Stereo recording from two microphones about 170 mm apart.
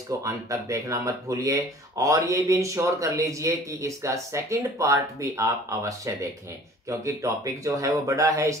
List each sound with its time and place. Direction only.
0.2 s speech: 20° right (ahead or behind)